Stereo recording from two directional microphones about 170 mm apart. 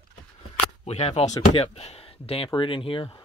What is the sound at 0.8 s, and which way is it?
Speech, 35° left (ahead or behind).